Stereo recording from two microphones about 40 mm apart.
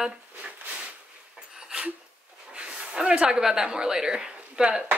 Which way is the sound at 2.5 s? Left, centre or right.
Right.